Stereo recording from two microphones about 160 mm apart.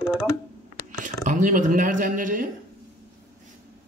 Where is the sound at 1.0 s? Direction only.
55° right (ahead or behind).